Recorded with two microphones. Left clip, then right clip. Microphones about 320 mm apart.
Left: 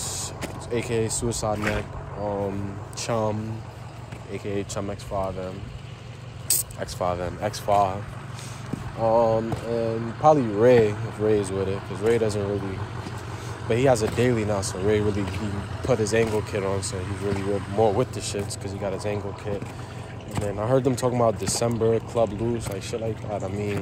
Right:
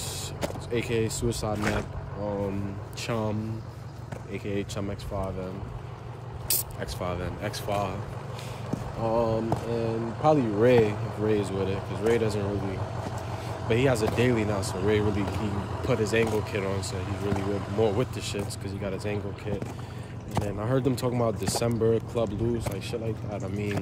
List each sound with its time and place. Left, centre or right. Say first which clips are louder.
0.0 s speech: left 1 dB; centre
3.0 s speech: left 5 dB; centre
6.5 s speech: left 4 dB; centre
9.0 s speech: left 6 dB; centre
9.8 s speech: left 2 dB; right
10.6 s speech: left 3 dB; centre
12.5 s speech: left 2 dB; right
13.7 s speech: left 4 dB; centre
15.0 s speech: left 2 dB; right
15.8 s speech: left 3 dB; centre